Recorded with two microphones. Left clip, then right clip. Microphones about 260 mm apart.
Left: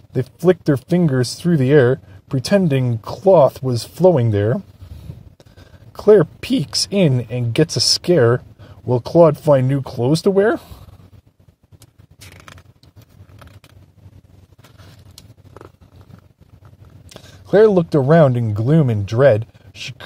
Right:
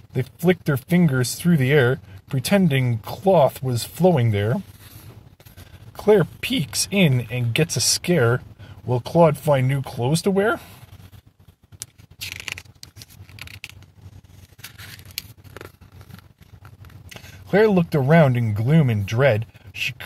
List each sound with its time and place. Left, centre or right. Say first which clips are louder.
0.1 s speech: left 5 dB; left
6.0 s speech: left 5 dB; left
18.1 s speech: left 4 dB; left